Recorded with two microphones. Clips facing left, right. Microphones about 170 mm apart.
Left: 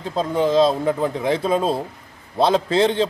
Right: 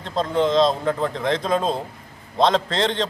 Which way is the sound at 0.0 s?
10° left (ahead or behind).